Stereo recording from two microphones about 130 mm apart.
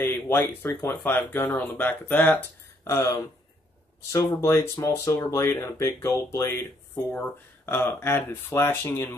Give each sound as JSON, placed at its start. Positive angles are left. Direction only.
{"t": 0.0, "sound": "speech", "side_deg": 15}